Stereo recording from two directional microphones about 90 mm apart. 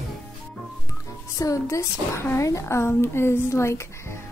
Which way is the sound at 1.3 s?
35° left (ahead or behind).